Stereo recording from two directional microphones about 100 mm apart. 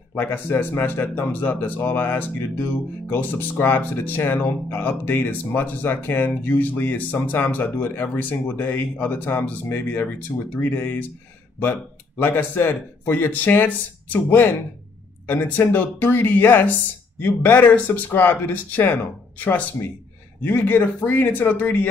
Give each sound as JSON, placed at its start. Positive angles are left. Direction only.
{"t": 0.1, "sound": "speech", "side_deg": 20}
{"t": 20.4, "sound": "speech", "side_deg": 20}